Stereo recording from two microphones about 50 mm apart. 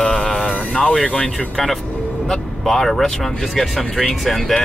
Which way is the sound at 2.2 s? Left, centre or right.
Centre.